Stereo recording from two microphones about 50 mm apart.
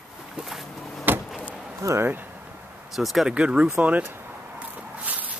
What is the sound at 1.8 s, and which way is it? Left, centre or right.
Speech, right.